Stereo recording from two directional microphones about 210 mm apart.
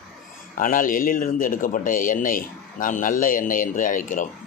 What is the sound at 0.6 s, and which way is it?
Speech, 40° left (ahead or behind).